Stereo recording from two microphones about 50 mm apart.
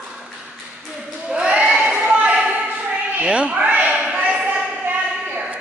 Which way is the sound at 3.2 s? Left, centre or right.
Right.